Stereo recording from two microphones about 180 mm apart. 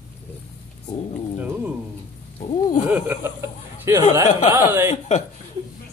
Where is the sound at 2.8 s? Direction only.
10° right (ahead or behind).